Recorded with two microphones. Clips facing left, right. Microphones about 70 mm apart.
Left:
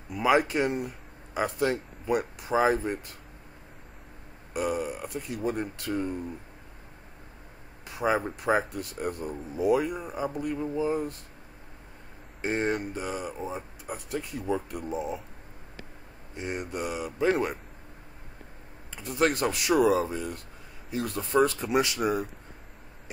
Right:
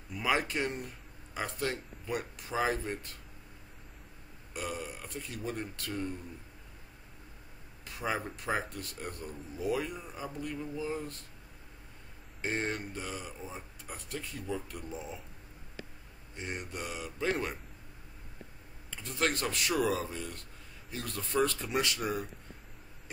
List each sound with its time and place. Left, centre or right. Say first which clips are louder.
0.1 s speech: left 8 dB; centre
4.6 s speech: left 9 dB; centre
7.8 s speech: left 8 dB; centre
10.6 s speech: left 10 dB; left
10.9 s speech: left 8 dB; centre
12.4 s speech: left 6 dB; centre
16.3 s speech: left 7 dB; centre
18.9 s speech: left 7 dB; centre